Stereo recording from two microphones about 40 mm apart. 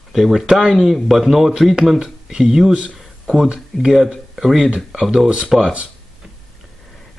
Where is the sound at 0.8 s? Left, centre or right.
Centre.